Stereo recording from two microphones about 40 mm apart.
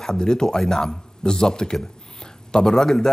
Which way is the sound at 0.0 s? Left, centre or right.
Centre.